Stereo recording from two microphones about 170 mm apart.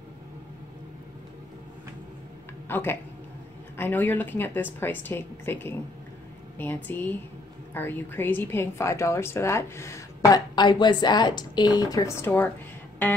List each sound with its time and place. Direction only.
2.7 s a woman's voice: 15° left (ahead or behind)